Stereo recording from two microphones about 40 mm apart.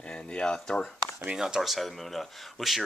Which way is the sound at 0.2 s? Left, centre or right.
Left.